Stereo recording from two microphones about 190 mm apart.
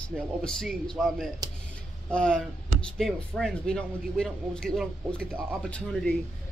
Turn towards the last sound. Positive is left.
turn(degrees=0)  # may be behind; listen again after turning